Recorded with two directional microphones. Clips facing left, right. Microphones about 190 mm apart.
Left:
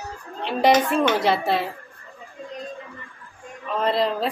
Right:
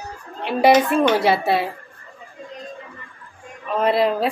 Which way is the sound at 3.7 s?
10° right (ahead or behind).